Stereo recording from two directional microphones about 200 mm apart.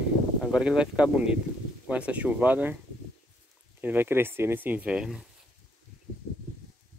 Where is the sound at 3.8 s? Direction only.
10° right (ahead or behind).